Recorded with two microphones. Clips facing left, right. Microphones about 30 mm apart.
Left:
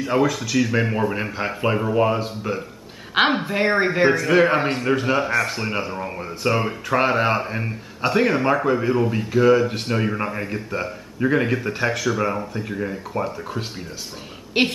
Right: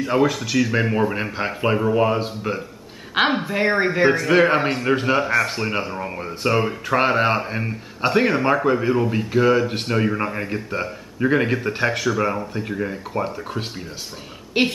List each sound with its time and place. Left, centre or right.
0.0 s speech: centre
3.2 s speech: centre
4.1 s speech: centre
14.5 s a woman's voice: centre